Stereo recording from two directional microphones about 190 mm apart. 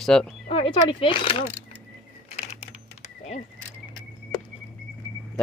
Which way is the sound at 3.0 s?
35° left (ahead or behind).